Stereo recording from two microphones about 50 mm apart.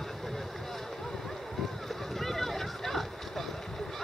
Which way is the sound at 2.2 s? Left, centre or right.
Centre.